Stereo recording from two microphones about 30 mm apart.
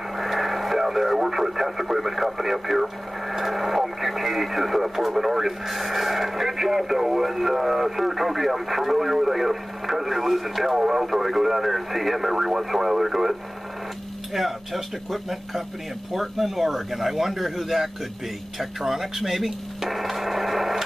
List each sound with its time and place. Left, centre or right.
0.2 s radio: centre
3.3 s speech: centre